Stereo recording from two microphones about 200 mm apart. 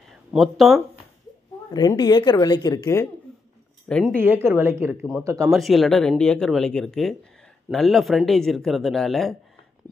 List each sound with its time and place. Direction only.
0.3 s speech: centre (ahead or behind)
1.7 s speech: 20° left (ahead or behind)
3.9 s speech: 5° left (ahead or behind)
4.2 s speech: 10° right (ahead or behind)
5.5 s speech: centre (ahead or behind)